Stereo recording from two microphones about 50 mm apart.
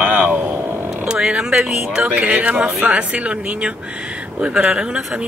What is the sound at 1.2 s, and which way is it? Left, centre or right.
Speech, centre.